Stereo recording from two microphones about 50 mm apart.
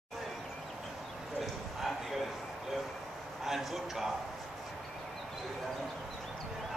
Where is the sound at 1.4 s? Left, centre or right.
Centre.